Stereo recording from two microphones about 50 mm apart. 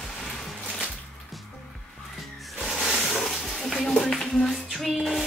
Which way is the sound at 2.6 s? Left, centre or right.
Centre.